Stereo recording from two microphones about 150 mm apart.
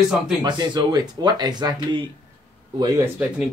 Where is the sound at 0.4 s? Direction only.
30° right (ahead or behind).